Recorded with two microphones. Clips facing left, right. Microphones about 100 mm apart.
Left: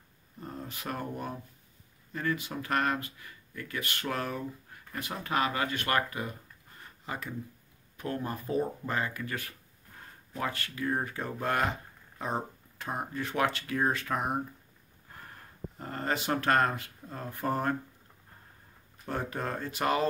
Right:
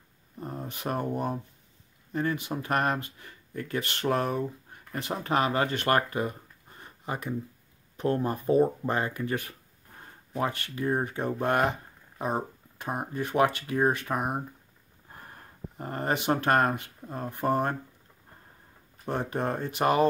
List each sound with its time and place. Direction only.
0.4 s speech: 20° right (ahead or behind)
15.8 s speech: 20° right (ahead or behind)
19.0 s speech: 25° right (ahead or behind)